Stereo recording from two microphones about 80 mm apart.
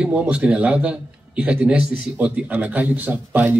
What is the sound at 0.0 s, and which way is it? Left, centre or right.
A man's voice, centre.